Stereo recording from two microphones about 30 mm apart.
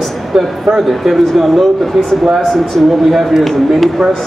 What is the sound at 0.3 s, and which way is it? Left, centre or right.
Speech, right.